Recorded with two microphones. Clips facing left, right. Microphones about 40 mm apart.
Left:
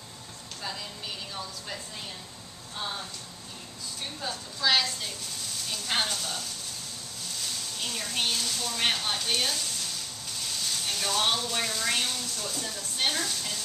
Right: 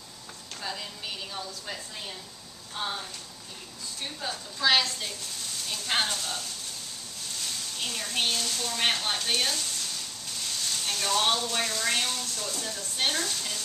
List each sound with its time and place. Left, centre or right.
4.6 s speech: centre
7.8 s speech: centre
10.7 s speech: centre